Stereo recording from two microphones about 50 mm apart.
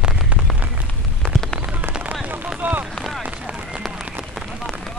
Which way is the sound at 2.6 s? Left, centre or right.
Right.